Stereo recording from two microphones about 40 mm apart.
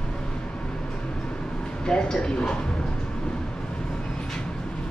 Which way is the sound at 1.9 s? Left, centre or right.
Left.